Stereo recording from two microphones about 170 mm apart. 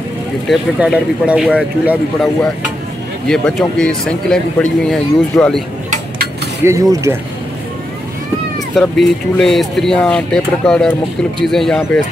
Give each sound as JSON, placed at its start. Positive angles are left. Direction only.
{"t": 0.5, "sound": "speech", "side_deg": -5}
{"t": 3.3, "sound": "speech", "side_deg": 5}
{"t": 6.6, "sound": "speech", "side_deg": -20}
{"t": 8.7, "sound": "speech", "side_deg": 0}